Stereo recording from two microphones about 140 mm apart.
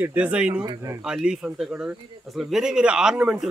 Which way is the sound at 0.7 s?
20° right (ahead or behind).